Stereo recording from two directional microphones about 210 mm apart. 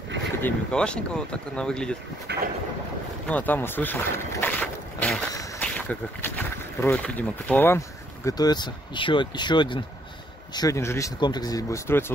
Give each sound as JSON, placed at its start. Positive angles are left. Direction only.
{"t": 0.4, "sound": "speech", "side_deg": 5}
{"t": 2.3, "sound": "vehicle", "side_deg": -55}
{"t": 3.3, "sound": "a sound", "side_deg": 10}
{"t": 8.3, "sound": "speech", "side_deg": 20}